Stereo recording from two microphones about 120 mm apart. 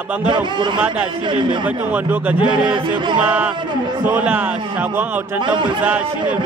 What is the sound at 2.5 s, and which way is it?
Speech, 40° right (ahead or behind).